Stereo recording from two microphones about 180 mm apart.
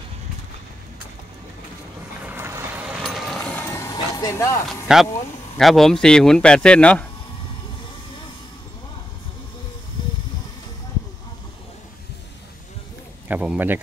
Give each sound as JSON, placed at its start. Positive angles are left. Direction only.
{"t": 2.2, "sound": "boat", "side_deg": -15}
{"t": 3.0, "sound": "vehicle", "side_deg": 0}
{"t": 3.6, "sound": "a sound", "side_deg": 15}
{"t": 4.6, "sound": "speech", "side_deg": 0}
{"t": 13.3, "sound": "speech", "side_deg": -10}